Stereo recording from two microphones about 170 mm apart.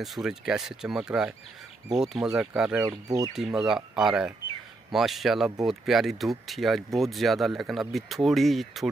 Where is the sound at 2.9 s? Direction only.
20° right (ahead or behind).